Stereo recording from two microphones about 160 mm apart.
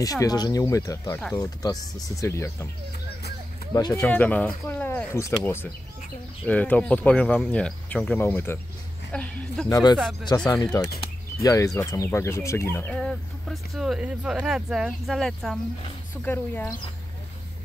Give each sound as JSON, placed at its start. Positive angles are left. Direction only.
{"t": 0.0, "sound": "speech", "side_deg": 20}
{"t": 3.7, "sound": "speech", "side_deg": 25}
{"t": 4.0, "sound": "speech", "side_deg": 10}
{"t": 9.7, "sound": "speech", "side_deg": 25}
{"t": 12.9, "sound": "speech", "side_deg": 5}